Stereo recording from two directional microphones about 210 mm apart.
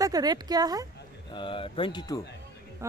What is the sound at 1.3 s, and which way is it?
Speech, 25° left (ahead or behind).